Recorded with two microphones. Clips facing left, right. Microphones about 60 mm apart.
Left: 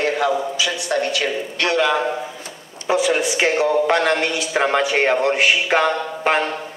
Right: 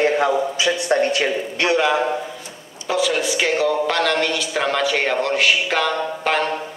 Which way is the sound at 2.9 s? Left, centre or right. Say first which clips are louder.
Left 2 dB; left.